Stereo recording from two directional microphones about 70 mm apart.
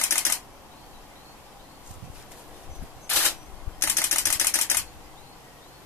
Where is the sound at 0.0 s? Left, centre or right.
Left.